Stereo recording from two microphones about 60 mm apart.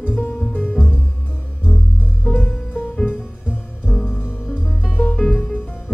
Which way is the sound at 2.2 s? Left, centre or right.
Left.